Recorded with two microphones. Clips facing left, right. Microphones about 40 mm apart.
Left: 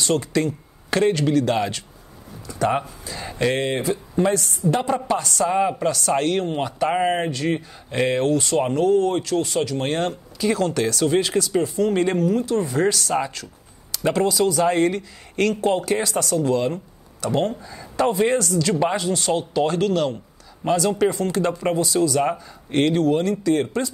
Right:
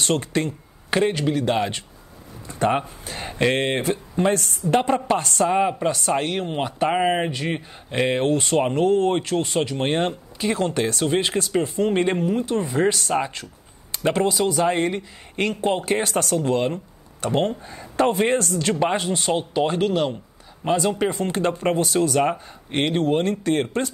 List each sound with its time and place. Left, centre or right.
0.0 s speech: right
0.8 s speech: centre
3.1 s speech: right
5.5 s speech: centre
6.1 s speech: centre; by 19.2 s right
19.2 s speech: right
22.3 s speech: right